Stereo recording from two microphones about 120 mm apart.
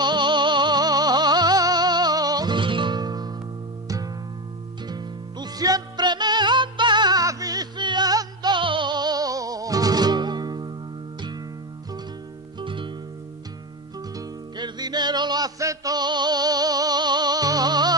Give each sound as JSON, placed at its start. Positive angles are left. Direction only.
{"t": 0.0, "sound": "music", "side_deg": -40}
{"t": 4.8, "sound": "music", "side_deg": -35}
{"t": 12.5, "sound": "music", "side_deg": -45}
{"t": 14.6, "sound": "music", "side_deg": -35}